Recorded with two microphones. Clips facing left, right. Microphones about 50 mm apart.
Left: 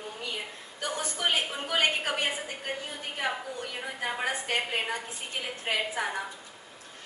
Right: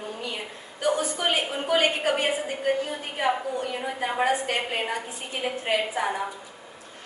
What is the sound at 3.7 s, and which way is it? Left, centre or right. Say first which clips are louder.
A man's voice: right 5 dB; centre.